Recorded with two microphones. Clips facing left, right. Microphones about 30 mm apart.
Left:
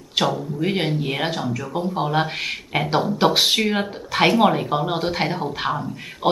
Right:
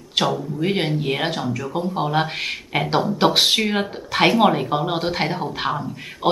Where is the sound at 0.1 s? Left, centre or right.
Centre.